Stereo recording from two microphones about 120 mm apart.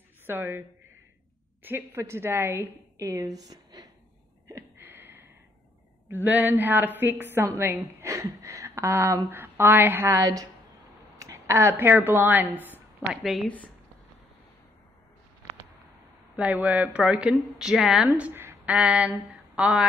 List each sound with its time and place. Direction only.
0.3 s a woman's voice: 20° right (ahead or behind)
4.5 s a sound: 20° right (ahead or behind)
6.2 s a woman's voice: 15° right (ahead or behind)
13.1 s a woman's voice: centre (ahead or behind)
16.3 s a woman's voice: 10° right (ahead or behind)